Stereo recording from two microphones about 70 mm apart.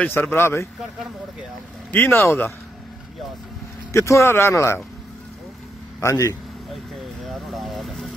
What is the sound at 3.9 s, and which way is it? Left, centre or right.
Speech, left.